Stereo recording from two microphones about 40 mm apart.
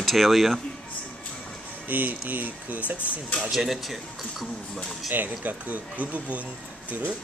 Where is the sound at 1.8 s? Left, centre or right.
Right.